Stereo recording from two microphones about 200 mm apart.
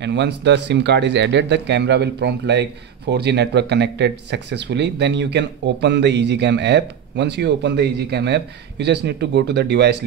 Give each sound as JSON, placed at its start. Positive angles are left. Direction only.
{"t": 0.0, "sound": "speech", "side_deg": -60}